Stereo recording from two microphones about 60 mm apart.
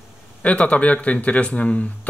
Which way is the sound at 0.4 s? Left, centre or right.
Left.